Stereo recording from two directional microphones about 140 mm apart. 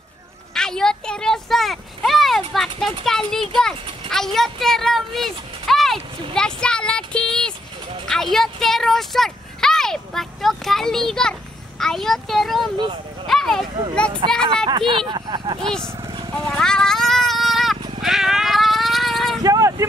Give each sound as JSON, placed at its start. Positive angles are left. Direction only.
{"t": 0.6, "sound": "a sound", "side_deg": 5}
{"t": 4.1, "sound": "speech", "side_deg": 0}
{"t": 6.3, "sound": "a sound", "side_deg": 5}
{"t": 8.1, "sound": "speech", "side_deg": 0}
{"t": 12.7, "sound": "speech", "side_deg": -35}
{"t": 13.3, "sound": "a sound", "side_deg": 0}
{"t": 14.3, "sound": "speech", "side_deg": 5}
{"t": 14.7, "sound": "speech", "side_deg": -35}
{"t": 15.6, "sound": "speech", "side_deg": 5}
{"t": 16.4, "sound": "vehicle", "side_deg": 5}
{"t": 18.0, "sound": "cat", "side_deg": -5}
{"t": 19.4, "sound": "vehicle", "side_deg": -25}